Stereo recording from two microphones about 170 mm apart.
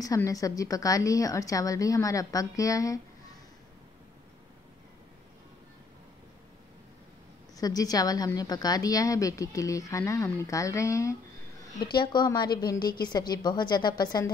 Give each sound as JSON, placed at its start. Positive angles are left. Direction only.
{"t": 0.0, "sound": "a woman's voice", "side_deg": 20}
{"t": 7.5, "sound": "a woman's voice", "side_deg": 20}